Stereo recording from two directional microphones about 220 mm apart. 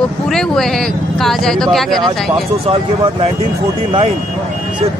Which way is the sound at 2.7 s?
25° right (ahead or behind).